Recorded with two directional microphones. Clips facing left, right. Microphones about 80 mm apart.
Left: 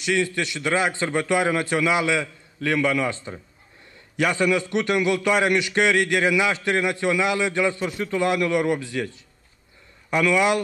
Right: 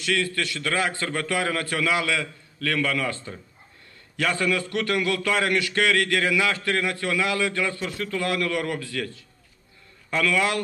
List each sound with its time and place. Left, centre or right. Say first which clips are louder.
0.0 s a man's voice: left 3 dB; left